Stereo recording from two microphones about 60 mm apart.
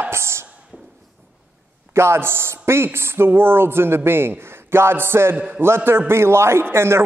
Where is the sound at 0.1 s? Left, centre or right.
Right.